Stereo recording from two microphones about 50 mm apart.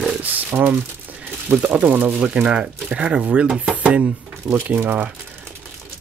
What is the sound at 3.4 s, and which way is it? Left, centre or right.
Speech, centre.